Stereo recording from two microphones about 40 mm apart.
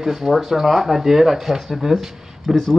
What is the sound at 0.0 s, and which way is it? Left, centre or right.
Speech, centre.